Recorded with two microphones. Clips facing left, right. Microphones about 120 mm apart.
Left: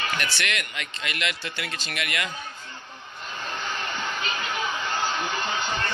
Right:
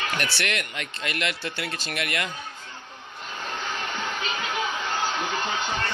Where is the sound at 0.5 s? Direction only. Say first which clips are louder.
Right 1 dB; 45° right (ahead or behind).